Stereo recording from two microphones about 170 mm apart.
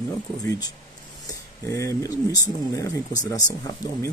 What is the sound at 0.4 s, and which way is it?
Speech, 20° left (ahead or behind).